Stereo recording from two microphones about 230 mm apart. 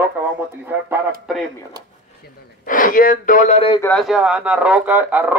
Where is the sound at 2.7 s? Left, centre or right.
Left.